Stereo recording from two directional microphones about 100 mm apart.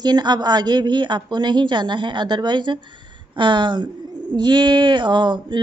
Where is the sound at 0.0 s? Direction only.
45° right (ahead or behind).